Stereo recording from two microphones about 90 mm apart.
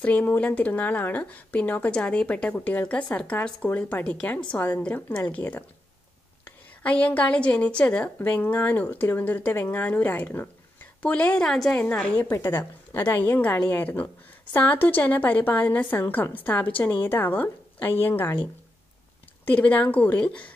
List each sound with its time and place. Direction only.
0.0 s speech: 15° left (ahead or behind)
6.8 s speech: 15° left (ahead or behind)
12.3 s a woman's voice: 40° left (ahead or behind)
12.9 s a woman's voice: 20° left (ahead or behind)
19.4 s speech: 20° left (ahead or behind)